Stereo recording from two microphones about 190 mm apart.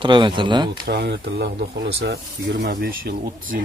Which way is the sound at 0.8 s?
60° right (ahead or behind).